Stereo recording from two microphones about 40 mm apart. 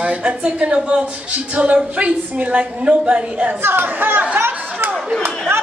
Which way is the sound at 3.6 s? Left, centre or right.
Right.